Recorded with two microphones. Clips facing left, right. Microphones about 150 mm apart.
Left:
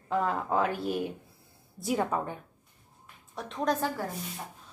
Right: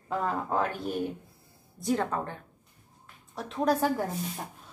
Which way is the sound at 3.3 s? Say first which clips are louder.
Right 3 dB; centre (ahead or behind).